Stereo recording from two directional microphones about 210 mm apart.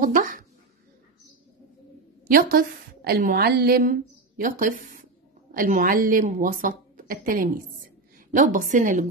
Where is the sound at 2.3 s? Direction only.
45° right (ahead or behind).